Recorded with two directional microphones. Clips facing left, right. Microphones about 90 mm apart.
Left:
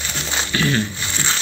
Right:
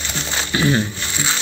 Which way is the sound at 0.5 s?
20° right (ahead or behind).